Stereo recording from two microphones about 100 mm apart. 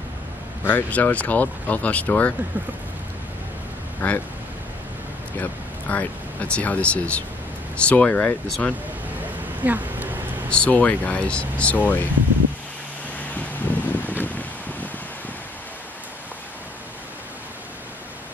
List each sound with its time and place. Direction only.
0.7 s speech: 15° left (ahead or behind)
4.0 s speech: 15° left (ahead or behind)
5.4 s speech: 15° left (ahead or behind)
9.6 s a sound: 15° right (ahead or behind)
10.5 s speech: 15° left (ahead or behind)
13.3 s a sound: 15° left (ahead or behind)
14.2 s wind: 15° left (ahead or behind)